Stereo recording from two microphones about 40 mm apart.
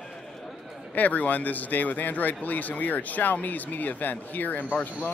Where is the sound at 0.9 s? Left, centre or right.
Left.